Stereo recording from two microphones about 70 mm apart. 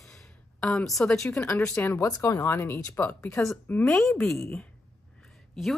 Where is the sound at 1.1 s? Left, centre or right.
Centre.